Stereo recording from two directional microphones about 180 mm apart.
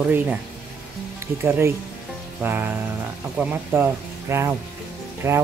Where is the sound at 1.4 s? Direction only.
15° right (ahead or behind).